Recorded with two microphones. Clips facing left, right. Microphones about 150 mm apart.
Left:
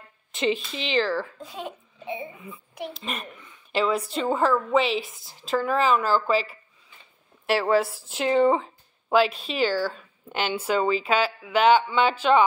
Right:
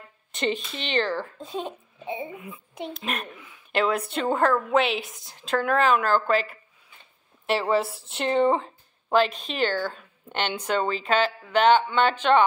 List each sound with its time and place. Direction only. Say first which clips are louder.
0.3 s a woman's voice: left 2 dB; centre (ahead or behind)
1.4 s a child's voice: right 3 dB; 25° right (ahead or behind)
2.9 s a woman's voice: right 2 dB; centre (ahead or behind)